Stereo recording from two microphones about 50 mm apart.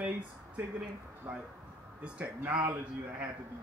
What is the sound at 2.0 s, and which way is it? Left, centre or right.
Speech, right.